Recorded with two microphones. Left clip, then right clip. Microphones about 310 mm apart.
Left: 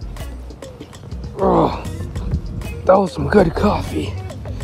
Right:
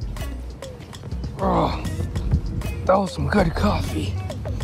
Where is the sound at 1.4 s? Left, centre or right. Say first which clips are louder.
Left 6 dB; left.